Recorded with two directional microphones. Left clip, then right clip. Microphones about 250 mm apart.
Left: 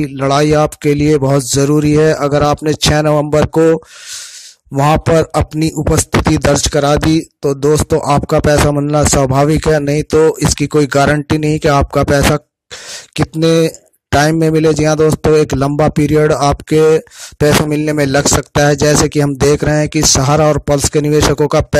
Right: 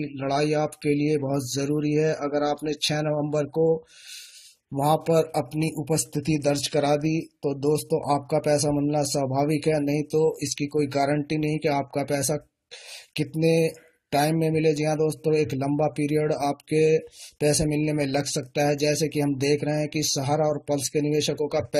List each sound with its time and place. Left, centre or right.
0.0 s speech: left
4.7 s speech: left
13.1 s speech: left